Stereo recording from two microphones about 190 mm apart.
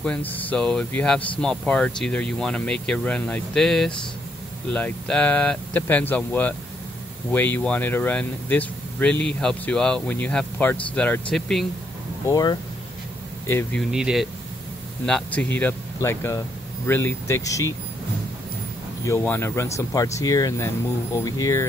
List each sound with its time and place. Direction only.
0.0 s speech: 5° left (ahead or behind)
12.3 s speech: 20° left (ahead or behind)
13.8 s speech: 5° right (ahead or behind); by 17.7 s 15° left (ahead or behind)
19.0 s speech: 10° left (ahead or behind)